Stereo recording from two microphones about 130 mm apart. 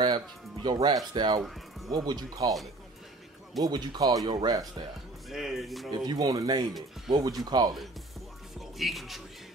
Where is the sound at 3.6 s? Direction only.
35° right (ahead or behind).